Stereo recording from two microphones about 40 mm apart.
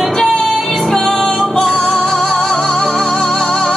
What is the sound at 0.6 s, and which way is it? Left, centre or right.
Music, centre.